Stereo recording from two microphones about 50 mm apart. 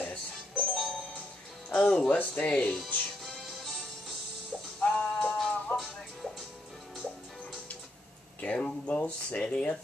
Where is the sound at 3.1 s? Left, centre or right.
Centre.